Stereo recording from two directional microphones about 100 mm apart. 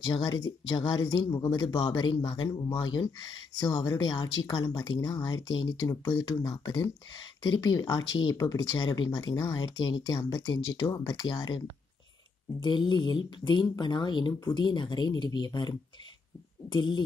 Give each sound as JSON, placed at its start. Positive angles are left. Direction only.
{"t": 0.0, "sound": "speech", "side_deg": 45}
{"t": 12.6, "sound": "speech", "side_deg": 50}